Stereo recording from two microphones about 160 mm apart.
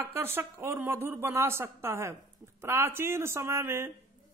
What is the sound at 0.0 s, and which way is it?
Speech, 15° right (ahead or behind).